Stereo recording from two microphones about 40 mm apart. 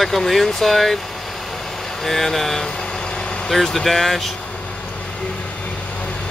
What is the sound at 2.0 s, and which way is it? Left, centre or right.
Speech, centre.